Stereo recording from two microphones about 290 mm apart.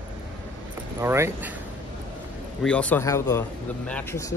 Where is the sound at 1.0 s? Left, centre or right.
Centre.